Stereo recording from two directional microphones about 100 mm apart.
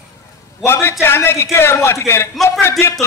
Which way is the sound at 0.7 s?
25° left (ahead or behind).